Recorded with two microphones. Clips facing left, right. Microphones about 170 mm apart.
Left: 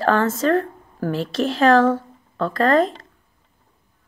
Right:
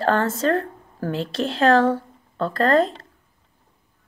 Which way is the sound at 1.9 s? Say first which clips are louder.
Left 2 dB; 35° right (ahead or behind).